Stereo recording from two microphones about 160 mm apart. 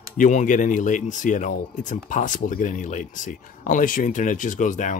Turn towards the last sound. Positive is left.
turn(degrees=50)  # may be behind; listen again after turning